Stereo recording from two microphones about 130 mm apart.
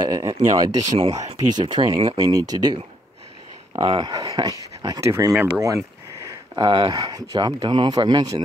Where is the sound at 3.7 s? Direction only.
35° right (ahead or behind).